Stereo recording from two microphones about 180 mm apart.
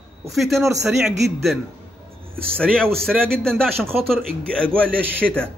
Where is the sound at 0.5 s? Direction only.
15° right (ahead or behind).